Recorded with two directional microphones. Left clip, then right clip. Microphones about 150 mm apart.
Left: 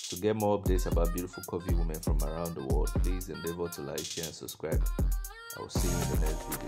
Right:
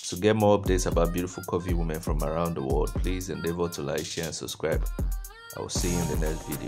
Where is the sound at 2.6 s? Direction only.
Centre (ahead or behind).